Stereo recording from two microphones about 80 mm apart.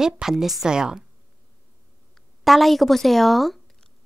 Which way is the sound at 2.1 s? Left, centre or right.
Centre.